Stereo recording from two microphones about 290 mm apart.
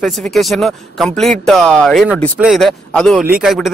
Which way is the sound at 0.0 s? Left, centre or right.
Centre.